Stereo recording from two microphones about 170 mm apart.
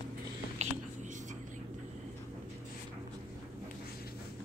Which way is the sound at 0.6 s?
45° right (ahead or behind).